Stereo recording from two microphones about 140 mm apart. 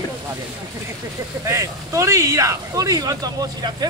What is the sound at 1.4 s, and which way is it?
Speech, 20° right (ahead or behind).